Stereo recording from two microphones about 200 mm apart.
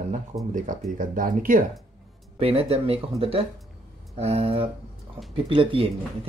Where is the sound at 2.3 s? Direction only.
30° right (ahead or behind).